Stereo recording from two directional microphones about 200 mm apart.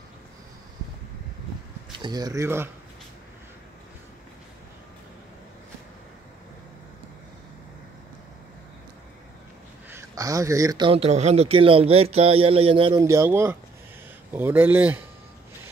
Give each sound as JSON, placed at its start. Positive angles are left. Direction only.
{"t": 1.9, "sound": "speech", "side_deg": -20}
{"t": 9.8, "sound": "speech", "side_deg": -15}
{"t": 13.0, "sound": "speech", "side_deg": -15}